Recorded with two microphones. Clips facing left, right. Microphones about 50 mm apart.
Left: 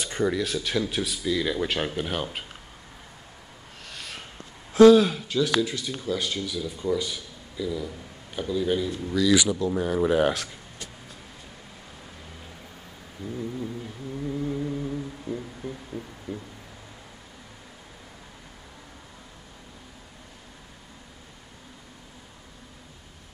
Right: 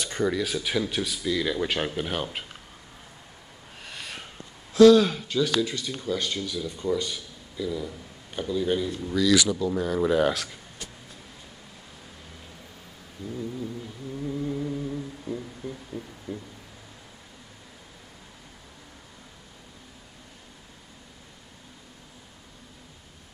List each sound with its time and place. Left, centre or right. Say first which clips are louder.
0.0 s a sound: left 1 dB; left
0.3 s speech: even; centre
3.8 s a sound: right 1 dB; centre
4.9 s speech: left 1 dB; centre
9.3 s speech: even; centre
13.3 s speech: left 1 dB; centre
14.2 s humming: left 1 dB; centre